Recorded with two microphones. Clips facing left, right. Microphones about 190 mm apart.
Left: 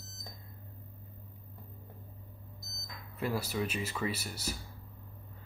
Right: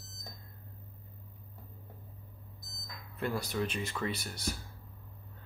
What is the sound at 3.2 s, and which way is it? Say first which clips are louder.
Speech: even; 5° left (ahead or behind).